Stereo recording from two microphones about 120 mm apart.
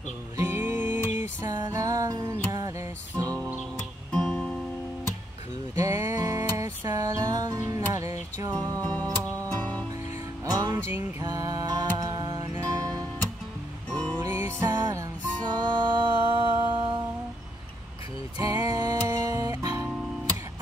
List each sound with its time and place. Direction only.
0.4 s music: 20° right (ahead or behind)
1.4 s music: 30° right (ahead or behind)
4.1 s music: 5° left (ahead or behind)
5.8 s music: 25° right (ahead or behind)
9.6 s music: 10° left (ahead or behind)
10.4 s music: 35° right (ahead or behind)
14.2 s music: 20° right (ahead or behind); by 17.0 s 40° right (ahead or behind)
18.4 s music: 30° right (ahead or behind)